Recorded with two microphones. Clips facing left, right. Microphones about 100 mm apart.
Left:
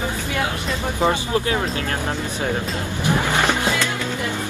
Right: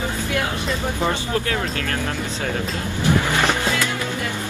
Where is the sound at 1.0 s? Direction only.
20° left (ahead or behind).